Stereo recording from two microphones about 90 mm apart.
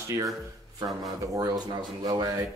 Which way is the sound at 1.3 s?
45° right (ahead or behind).